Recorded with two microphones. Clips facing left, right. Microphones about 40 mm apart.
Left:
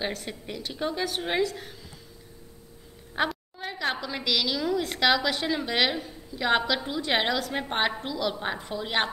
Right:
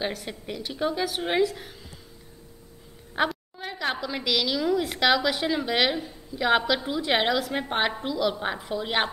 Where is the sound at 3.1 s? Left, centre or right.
Centre.